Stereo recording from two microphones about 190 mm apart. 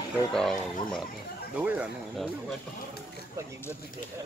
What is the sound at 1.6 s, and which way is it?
Speech, 10° right (ahead or behind).